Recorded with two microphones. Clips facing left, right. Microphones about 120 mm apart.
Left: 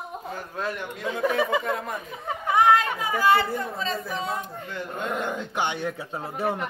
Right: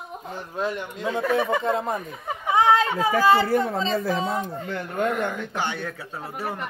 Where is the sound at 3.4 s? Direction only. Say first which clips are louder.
Right 6 dB; 90° right.